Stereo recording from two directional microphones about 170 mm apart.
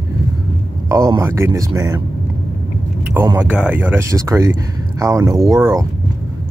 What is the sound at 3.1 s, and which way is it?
Speech, 15° right (ahead or behind).